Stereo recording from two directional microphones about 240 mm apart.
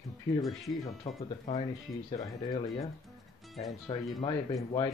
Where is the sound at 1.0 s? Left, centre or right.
Left.